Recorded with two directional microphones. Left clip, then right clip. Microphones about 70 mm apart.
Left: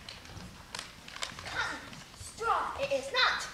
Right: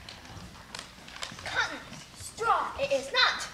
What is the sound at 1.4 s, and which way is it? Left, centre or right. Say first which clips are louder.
Dog: right 6 dB; right.